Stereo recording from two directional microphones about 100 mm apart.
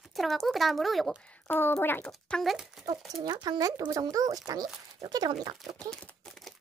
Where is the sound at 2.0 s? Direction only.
5° left (ahead or behind).